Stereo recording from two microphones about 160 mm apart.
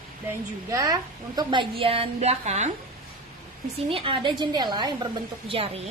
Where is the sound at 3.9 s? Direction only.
35° right (ahead or behind).